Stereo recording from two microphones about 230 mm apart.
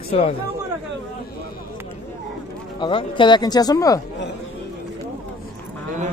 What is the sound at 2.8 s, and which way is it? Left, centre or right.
Speech, left.